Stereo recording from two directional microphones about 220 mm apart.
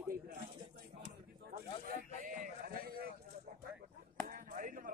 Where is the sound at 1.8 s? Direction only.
40° right (ahead or behind).